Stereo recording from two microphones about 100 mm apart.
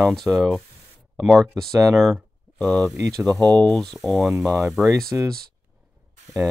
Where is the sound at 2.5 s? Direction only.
10° left (ahead or behind).